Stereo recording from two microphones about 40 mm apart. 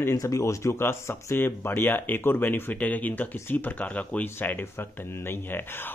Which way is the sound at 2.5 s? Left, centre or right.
Left.